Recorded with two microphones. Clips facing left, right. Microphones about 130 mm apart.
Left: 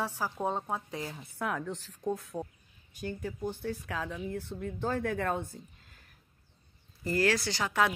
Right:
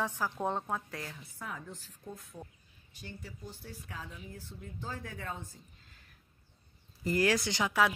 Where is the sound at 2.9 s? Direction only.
50° left (ahead or behind).